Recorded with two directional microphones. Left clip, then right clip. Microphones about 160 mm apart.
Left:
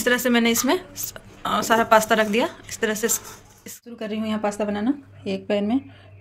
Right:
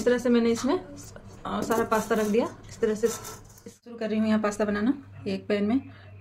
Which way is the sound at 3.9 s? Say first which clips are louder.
Right 1 dB; 15° left (ahead or behind).